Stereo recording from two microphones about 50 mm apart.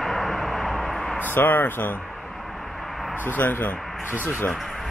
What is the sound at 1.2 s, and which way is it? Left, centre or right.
Speech, left.